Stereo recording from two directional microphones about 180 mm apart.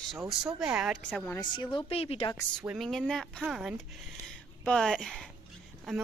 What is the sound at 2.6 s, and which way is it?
Speech, 5° right (ahead or behind).